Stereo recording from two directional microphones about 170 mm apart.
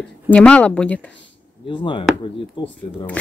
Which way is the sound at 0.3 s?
5° left (ahead or behind).